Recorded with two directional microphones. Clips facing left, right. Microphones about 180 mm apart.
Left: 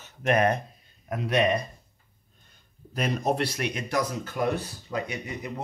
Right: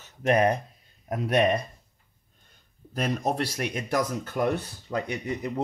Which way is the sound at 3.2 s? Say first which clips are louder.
Left 1 dB; 45° right (ahead or behind).